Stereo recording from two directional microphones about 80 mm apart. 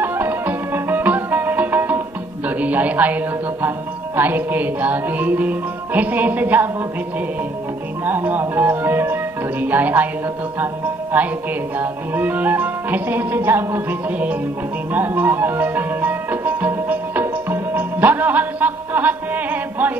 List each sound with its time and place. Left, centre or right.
0.0 s music: right
2.4 s a man's voice: centre
4.2 s music: right
8.0 s speech: right
11.8 s music: right